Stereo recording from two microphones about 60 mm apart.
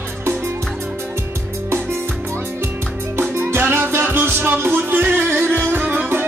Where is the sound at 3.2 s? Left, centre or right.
Right.